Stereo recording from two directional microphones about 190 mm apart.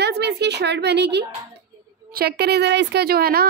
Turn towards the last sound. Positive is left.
turn(degrees=-50)  # may be behind; listen again after turning